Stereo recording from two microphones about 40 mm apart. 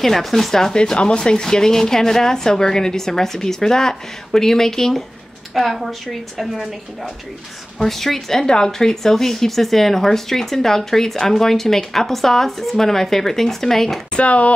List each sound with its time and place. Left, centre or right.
0.0 s a woman's voice: centre
7.8 s speech: centre
14.1 s speech: left